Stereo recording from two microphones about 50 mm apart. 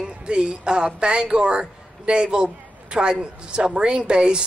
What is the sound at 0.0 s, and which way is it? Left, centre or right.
Speech, centre.